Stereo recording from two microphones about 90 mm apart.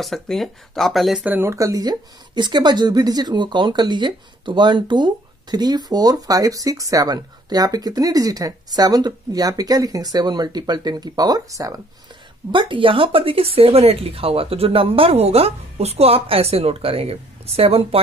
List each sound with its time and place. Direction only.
0.0 s speech: centre (ahead or behind)
1.2 s speech: 20° right (ahead or behind)
1.5 s speech: 40° right (ahead or behind)
12.4 s speech: 65° right (ahead or behind); by 18.0 s 90° right